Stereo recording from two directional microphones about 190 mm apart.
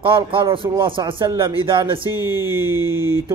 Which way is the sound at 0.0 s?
25° right (ahead or behind).